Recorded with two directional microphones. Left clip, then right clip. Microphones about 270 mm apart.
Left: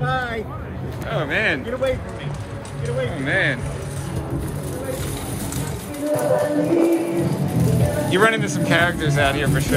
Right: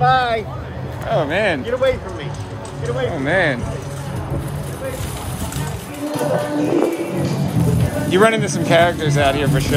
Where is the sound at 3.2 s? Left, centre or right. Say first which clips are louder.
Right 3 dB; centre.